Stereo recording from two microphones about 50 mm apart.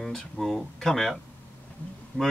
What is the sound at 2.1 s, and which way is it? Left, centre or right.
Speech, left.